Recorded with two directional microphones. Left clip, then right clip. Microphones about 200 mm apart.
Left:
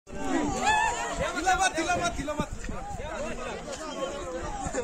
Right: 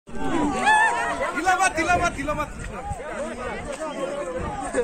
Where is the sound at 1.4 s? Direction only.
35° left (ahead or behind).